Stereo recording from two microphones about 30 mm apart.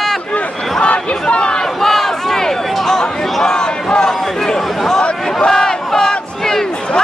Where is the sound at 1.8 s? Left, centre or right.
Centre.